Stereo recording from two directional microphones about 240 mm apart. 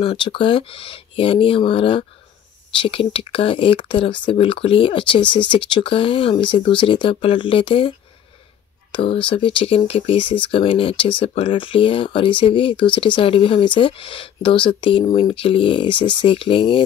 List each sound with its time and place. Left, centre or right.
0.0 s speech: left
8.9 s speech: left